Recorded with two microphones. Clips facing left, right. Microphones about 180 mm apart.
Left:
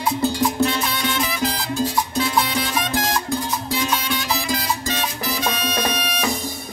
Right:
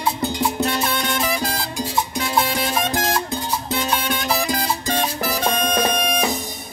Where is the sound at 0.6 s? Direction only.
45° right (ahead or behind).